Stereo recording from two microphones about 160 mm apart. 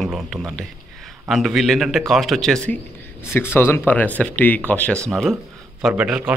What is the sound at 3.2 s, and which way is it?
Speech, 15° left (ahead or behind).